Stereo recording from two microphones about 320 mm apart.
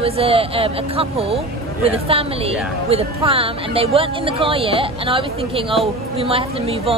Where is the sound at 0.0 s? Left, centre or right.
Centre.